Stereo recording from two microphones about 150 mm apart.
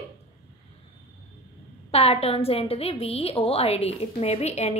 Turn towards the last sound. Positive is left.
turn(degrees=45)  # may be behind; listen again after turning